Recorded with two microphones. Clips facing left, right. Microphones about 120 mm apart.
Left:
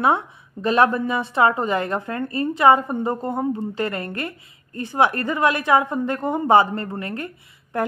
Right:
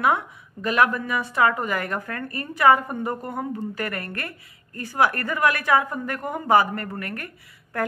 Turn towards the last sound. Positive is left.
turn(degrees=20)  # may be behind; listen again after turning